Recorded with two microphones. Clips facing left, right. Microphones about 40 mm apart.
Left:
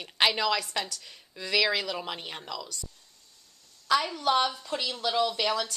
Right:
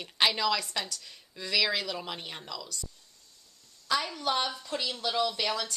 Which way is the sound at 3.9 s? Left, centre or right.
Centre.